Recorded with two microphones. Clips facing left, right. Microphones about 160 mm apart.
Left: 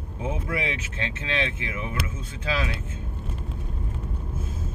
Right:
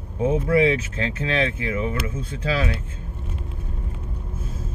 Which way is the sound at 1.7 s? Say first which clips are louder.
Right 6 dB; 30° right (ahead or behind).